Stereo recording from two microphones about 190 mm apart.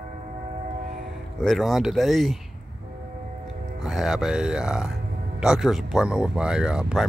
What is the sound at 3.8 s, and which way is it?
Speech, centre (ahead or behind).